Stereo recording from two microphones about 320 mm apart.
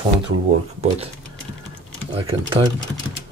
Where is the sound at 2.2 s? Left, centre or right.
Centre.